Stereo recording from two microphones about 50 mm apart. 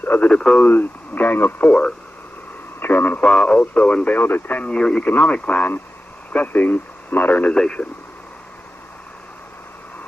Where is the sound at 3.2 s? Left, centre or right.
Centre.